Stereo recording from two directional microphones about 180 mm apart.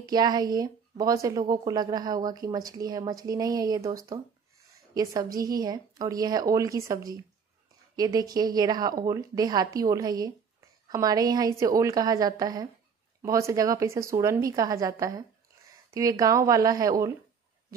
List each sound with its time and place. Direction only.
0.0 s speech: 20° right (ahead or behind)
4.9 s a woman's voice: 20° right (ahead or behind)